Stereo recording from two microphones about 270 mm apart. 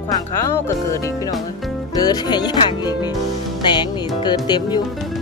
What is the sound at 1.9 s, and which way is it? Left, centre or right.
Music, centre.